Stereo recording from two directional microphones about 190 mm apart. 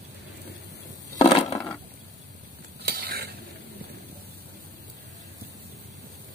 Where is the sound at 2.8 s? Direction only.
55° right (ahead or behind).